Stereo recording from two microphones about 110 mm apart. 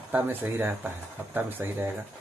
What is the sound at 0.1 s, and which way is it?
Speech, 15° right (ahead or behind).